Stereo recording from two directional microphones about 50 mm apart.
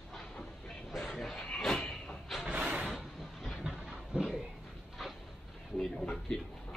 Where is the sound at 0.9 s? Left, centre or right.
Centre.